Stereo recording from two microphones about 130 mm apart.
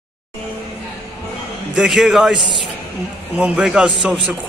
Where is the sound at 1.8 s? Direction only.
5° right (ahead or behind).